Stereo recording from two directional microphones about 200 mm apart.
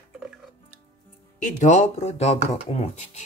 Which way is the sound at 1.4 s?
35° left (ahead or behind).